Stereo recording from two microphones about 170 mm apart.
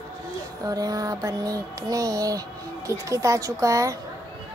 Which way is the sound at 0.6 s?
20° right (ahead or behind).